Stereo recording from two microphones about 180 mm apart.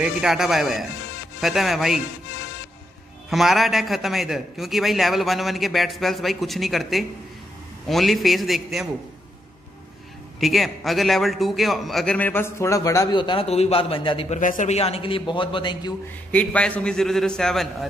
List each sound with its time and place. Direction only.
0.2 s a man's voice: centre (ahead or behind)
3.3 s a man's voice: centre (ahead or behind)
10.4 s a man's voice: centre (ahead or behind); by 14.4 s 30° left (ahead or behind)
14.4 s a man's voice: 45° left (ahead or behind); by 15.9 s 25° left (ahead or behind)
16.3 s a man's voice: 5° left (ahead or behind)